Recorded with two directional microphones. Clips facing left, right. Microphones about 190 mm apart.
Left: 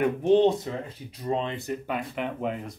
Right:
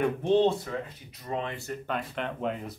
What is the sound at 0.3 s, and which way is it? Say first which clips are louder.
Speech: left 4 dB; 15° left (ahead or behind).